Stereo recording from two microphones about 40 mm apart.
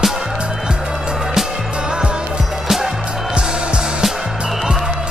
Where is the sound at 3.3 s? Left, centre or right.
Right.